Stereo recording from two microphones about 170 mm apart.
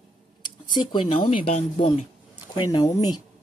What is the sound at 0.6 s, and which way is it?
Speech, 25° left (ahead or behind).